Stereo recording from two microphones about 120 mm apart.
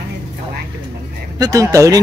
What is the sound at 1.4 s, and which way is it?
Speech, 30° right (ahead or behind).